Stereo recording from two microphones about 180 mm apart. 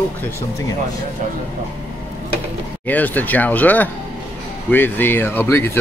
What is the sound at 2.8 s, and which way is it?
Speech, 10° left (ahead or behind).